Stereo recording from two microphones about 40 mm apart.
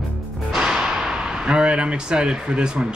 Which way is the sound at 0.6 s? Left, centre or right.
Centre.